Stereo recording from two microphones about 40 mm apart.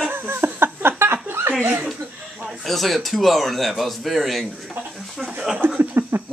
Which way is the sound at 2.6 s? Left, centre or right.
Centre.